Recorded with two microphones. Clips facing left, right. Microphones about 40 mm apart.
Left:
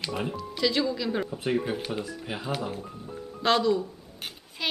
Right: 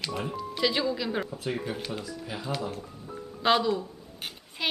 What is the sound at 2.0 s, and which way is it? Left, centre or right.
Speech, left.